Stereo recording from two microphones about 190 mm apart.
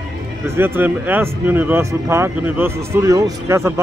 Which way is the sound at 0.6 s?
10° right (ahead or behind).